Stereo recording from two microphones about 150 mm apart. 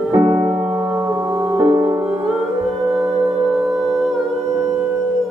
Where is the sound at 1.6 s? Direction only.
25° right (ahead or behind).